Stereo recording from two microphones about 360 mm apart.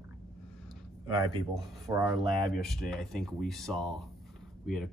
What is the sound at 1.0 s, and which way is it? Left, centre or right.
Speech, centre.